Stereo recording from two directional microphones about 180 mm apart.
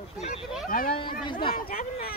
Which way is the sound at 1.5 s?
55° left (ahead or behind).